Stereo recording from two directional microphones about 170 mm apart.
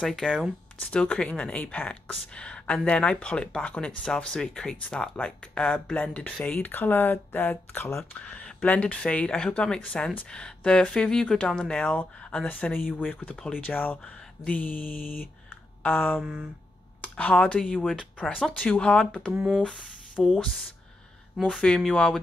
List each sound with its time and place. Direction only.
0.0 s speech: 5° left (ahead or behind)
13.1 s speech: 10° left (ahead or behind)
14.9 s mantra: 55° left (ahead or behind)
15.8 s a sound: 10° left (ahead or behind)
16.2 s speech: 5° right (ahead or behind)
17.0 s speech: 10° left (ahead or behind)
19.3 s speech: 5° right (ahead or behind)
19.6 s speech: 5° left (ahead or behind)